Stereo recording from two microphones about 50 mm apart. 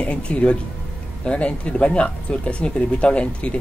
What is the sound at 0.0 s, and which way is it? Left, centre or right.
Speech, left.